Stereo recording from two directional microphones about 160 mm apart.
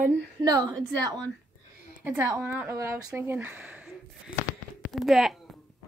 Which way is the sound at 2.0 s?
15° right (ahead or behind).